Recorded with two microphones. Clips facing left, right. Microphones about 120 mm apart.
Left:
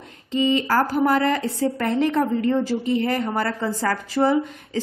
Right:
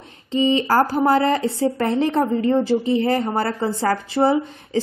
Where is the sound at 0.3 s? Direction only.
30° right (ahead or behind).